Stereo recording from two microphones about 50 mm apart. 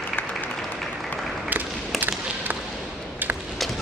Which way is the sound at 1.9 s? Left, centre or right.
Right.